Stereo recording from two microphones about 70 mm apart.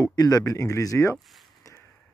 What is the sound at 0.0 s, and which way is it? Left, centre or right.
Speech, left.